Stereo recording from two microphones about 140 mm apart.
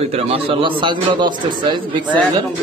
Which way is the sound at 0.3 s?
35° right (ahead or behind).